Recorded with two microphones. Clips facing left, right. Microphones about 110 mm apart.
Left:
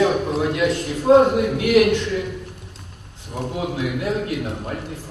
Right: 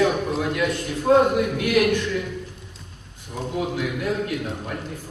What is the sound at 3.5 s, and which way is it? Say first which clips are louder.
Speech: even; 20° left (ahead or behind).